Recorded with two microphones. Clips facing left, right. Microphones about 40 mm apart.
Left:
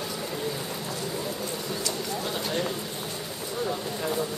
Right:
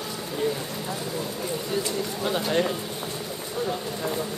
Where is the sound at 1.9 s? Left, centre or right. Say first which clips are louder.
Right 3 dB; right.